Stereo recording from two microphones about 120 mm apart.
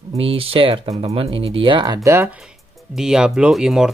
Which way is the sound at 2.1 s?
20° right (ahead or behind).